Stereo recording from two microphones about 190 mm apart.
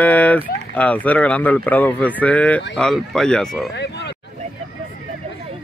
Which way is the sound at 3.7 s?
65° left (ahead or behind).